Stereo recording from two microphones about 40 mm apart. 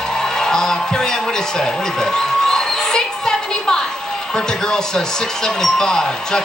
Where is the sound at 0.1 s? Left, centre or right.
Centre.